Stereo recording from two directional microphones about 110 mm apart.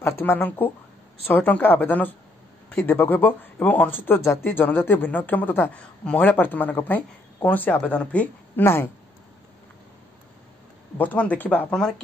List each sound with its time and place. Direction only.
0.0 s speech: 20° left (ahead or behind)
11.0 s speech: 15° left (ahead or behind)